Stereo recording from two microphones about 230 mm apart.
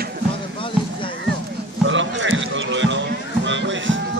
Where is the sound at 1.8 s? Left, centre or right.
Right.